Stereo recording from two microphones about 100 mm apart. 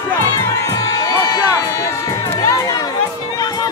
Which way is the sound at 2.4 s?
35° left (ahead or behind).